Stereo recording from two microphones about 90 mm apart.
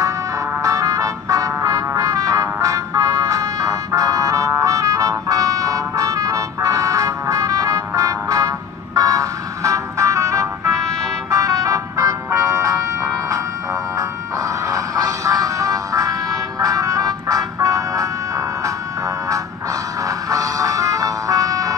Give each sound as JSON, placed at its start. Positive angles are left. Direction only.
{"t": 0.6, "sound": "music", "side_deg": -40}
{"t": 14.7, "sound": "music", "side_deg": -40}